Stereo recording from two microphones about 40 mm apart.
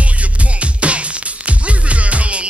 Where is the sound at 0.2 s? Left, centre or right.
Right.